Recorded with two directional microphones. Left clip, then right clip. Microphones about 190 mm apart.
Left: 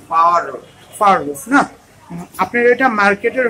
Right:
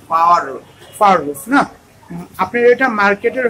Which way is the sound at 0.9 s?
Centre (ahead or behind).